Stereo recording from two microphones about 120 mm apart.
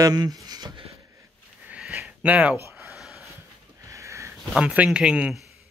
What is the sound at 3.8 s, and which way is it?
Sniff, 25° right (ahead or behind).